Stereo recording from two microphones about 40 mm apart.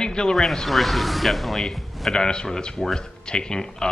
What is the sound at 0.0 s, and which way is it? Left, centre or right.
Zipper, centre.